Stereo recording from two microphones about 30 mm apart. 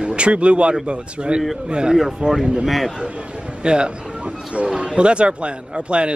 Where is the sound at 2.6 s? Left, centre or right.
Centre.